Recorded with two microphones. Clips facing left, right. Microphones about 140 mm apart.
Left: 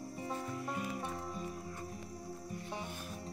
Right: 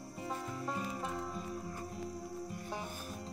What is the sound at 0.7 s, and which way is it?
Music, 30° right (ahead or behind).